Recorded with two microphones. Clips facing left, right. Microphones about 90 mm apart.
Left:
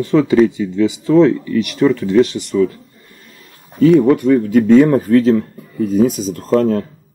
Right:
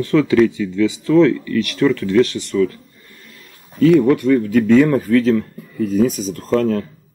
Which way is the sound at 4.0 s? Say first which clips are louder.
Left 2 dB; 15° left (ahead or behind).